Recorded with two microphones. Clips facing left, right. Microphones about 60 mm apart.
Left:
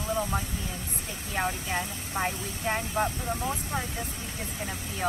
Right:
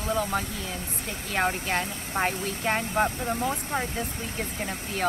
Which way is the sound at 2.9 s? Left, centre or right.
Right.